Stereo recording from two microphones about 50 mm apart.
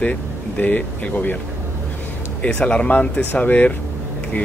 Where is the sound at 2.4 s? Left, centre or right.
Left.